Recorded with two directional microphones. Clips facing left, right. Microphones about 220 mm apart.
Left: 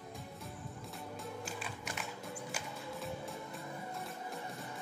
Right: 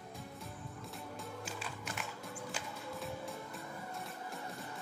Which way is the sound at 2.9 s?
Centre (ahead or behind).